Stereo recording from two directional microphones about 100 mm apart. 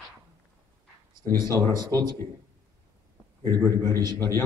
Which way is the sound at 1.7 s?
45° right (ahead or behind).